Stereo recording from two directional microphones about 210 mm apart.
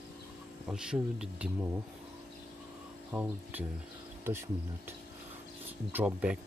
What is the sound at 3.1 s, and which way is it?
Speech, 10° right (ahead or behind).